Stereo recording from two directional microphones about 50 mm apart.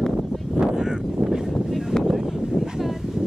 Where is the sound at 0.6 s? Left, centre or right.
Centre.